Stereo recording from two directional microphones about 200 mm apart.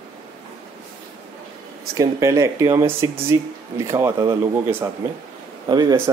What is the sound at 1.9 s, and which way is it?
Speech, 15° right (ahead or behind).